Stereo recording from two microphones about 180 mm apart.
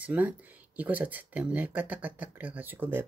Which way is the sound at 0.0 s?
10° right (ahead or behind).